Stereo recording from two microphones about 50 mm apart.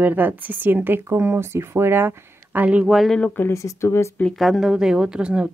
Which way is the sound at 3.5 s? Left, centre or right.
Left.